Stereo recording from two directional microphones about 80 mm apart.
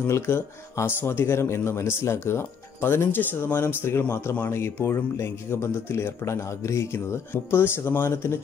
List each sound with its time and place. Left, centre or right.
0.0 s speech: left